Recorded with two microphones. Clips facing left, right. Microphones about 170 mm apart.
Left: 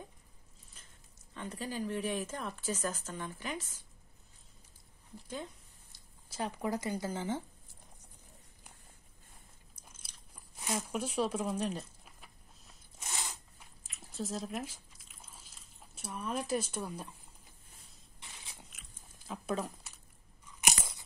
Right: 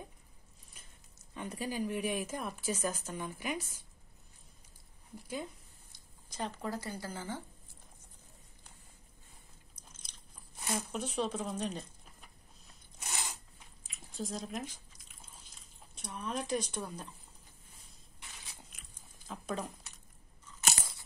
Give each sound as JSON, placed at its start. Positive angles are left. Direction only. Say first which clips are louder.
{"t": 0.8, "sound": "a sound", "louder": "right 1 dB", "side_deg": -10}
{"t": 1.3, "sound": "a woman's voice", "louder": "right 2 dB", "side_deg": -10}
{"t": 5.1, "sound": "a woman's voice", "louder": "right 2 dB", "side_deg": -10}
{"t": 5.9, "sound": "speech", "louder": "even", "side_deg": 5}
{"t": 9.8, "sound": "chewing", "louder": "even", "side_deg": 10}
{"t": 13.8, "sound": "drip", "louder": "left 1 dB", "side_deg": 0}
{"t": 18.6, "sound": "biting", "louder": "left 1 dB", "side_deg": 0}
{"t": 20.4, "sound": "crunch", "louder": "left 1 dB", "side_deg": 15}